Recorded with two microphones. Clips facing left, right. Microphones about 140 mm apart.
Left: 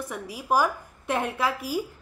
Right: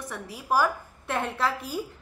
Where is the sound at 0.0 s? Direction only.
10° left (ahead or behind).